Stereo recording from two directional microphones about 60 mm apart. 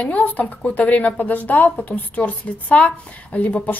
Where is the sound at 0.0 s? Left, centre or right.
Left.